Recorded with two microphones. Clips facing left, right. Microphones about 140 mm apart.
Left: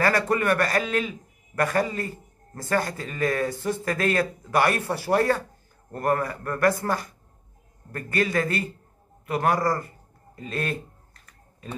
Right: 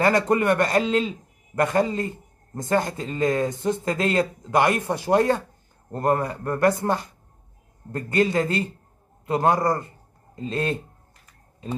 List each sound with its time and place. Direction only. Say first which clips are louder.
0.0 s a man's voice: right 3 dB; 20° right (ahead or behind)